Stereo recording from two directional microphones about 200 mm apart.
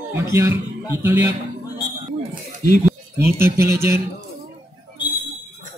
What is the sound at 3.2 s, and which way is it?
Speech, 10° right (ahead or behind).